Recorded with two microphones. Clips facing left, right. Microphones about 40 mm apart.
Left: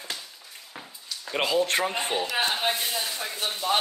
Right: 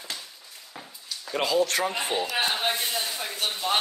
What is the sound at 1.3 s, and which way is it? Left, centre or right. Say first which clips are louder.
Speech: even; centre.